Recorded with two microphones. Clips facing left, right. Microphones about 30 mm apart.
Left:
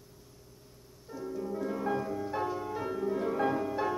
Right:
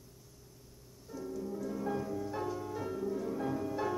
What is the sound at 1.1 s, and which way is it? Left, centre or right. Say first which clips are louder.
Harp: left 3 dB; left.